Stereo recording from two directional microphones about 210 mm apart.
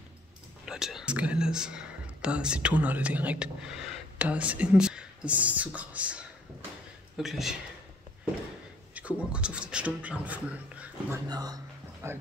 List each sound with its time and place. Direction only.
0.7 s speech: centre (ahead or behind)
8.9 s speech: 5° right (ahead or behind)
11.2 s speech: 20° right (ahead or behind)